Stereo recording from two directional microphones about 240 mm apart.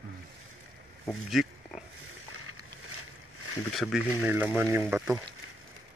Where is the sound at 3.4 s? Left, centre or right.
Right.